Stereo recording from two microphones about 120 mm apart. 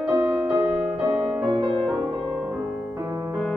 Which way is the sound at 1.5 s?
45° right (ahead or behind).